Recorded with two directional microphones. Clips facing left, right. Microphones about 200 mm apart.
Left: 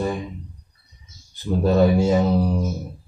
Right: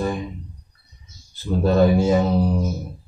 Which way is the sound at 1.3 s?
15° left (ahead or behind).